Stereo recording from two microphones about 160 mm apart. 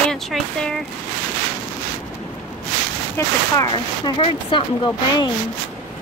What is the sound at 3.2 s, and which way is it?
Speech, 20° left (ahead or behind).